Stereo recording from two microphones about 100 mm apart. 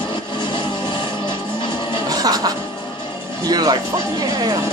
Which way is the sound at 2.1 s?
40° right (ahead or behind).